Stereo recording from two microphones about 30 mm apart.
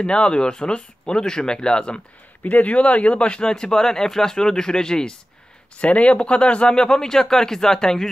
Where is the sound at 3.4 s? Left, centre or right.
Left.